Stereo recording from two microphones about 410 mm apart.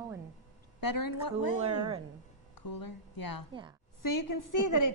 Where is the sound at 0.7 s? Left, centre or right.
Left.